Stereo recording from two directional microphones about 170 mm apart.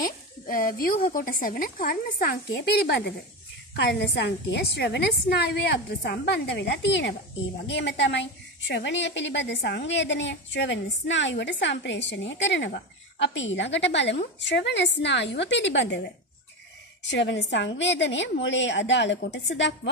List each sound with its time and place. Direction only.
0.0 s speech: 55° left (ahead or behind)
3.7 s a woman's voice: 85° left
17.0 s a woman's voice: 90° left